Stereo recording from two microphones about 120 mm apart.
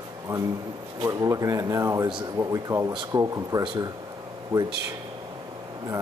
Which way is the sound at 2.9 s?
40° right (ahead or behind).